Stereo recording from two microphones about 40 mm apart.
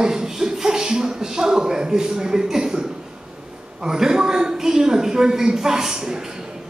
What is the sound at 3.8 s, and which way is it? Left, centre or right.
A man's voice, centre.